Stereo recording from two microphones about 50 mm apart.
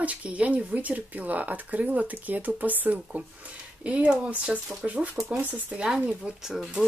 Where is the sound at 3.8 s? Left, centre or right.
Right.